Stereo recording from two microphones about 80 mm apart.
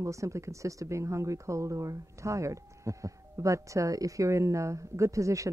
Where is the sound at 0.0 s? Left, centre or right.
Right.